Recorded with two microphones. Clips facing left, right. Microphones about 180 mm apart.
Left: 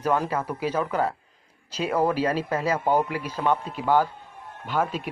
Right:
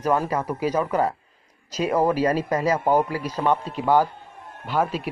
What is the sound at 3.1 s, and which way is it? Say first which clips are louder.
Speech: right 2 dB; 40° right (ahead or behind).